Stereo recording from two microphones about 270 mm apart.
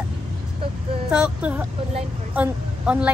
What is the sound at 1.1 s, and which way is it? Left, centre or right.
Speech, centre.